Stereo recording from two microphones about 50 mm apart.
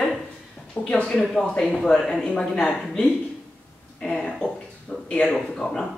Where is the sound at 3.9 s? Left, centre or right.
Centre.